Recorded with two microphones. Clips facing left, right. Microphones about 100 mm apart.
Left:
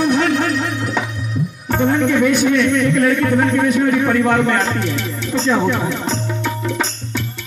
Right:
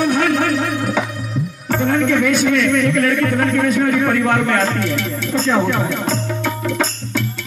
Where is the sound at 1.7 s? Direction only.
15° left (ahead or behind).